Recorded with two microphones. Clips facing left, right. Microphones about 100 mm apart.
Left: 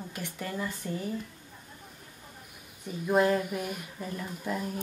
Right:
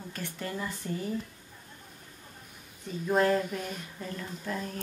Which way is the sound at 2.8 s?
10° left (ahead or behind).